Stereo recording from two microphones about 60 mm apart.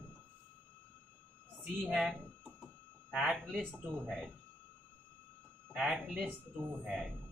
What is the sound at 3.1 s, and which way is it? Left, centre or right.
Speech, centre.